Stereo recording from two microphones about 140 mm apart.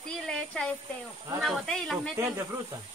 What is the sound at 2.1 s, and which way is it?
Speech, 20° right (ahead or behind).